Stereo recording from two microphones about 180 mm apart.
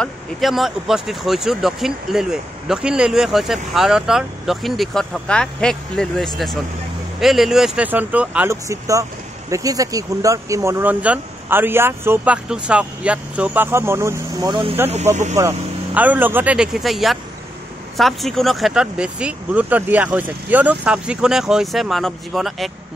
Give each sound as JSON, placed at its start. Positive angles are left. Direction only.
{"t": 0.0, "sound": "speech", "side_deg": 0}
{"t": 15.3, "sound": "speech", "side_deg": -10}